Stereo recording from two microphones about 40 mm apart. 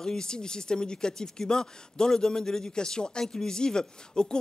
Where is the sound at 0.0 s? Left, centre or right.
Centre.